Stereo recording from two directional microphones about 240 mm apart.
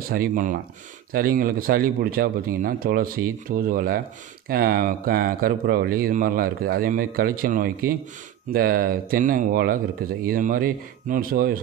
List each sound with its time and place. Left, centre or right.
0.1 s speech: right